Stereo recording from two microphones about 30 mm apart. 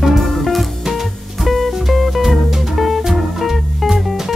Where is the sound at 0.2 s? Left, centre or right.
Centre.